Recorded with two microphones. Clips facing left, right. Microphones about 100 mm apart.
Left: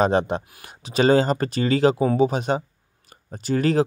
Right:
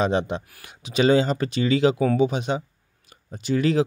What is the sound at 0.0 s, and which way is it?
Speech, 45° left (ahead or behind).